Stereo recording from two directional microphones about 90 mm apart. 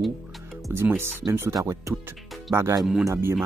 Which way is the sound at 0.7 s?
25° right (ahead or behind).